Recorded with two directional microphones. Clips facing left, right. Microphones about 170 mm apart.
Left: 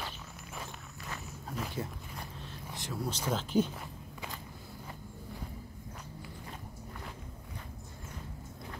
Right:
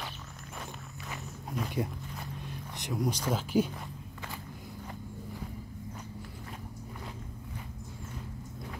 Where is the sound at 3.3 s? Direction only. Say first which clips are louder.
Even; 10° right (ahead or behind).